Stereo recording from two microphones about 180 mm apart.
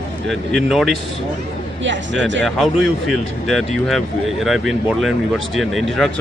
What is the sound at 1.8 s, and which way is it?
Speech, 90° right.